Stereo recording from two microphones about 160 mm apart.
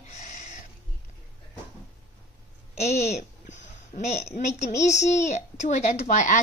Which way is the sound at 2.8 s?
45° left (ahead or behind).